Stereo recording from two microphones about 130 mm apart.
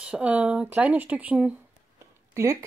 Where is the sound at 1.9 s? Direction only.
25° right (ahead or behind).